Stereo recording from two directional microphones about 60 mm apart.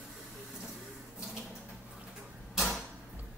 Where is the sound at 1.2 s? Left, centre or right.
Centre.